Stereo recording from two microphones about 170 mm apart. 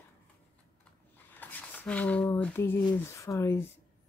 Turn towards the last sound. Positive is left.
turn(degrees=15)  # may be behind; listen again after turning